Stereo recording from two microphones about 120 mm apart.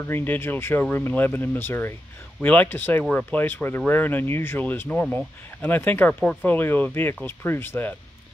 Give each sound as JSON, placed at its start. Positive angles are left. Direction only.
{"t": 0.0, "sound": "speech", "side_deg": 15}